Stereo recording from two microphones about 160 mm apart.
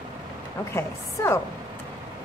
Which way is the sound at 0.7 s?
15° left (ahead or behind).